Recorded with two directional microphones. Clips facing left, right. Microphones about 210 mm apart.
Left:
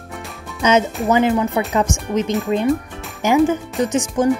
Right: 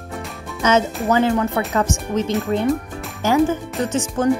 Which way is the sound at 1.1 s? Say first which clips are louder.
Left 1 dB; 15° left (ahead or behind).